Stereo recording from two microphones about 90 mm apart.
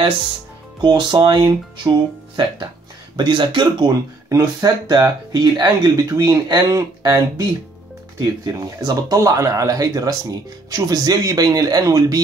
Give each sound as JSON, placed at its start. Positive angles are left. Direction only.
{"t": 0.7, "sound": "speech", "side_deg": -55}
{"t": 4.3, "sound": "speech", "side_deg": -35}
{"t": 8.2, "sound": "speech", "side_deg": -45}